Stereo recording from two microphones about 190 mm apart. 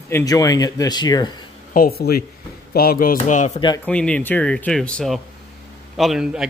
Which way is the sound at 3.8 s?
5° left (ahead or behind).